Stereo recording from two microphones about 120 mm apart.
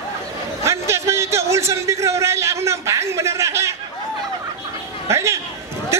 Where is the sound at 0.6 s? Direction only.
25° right (ahead or behind).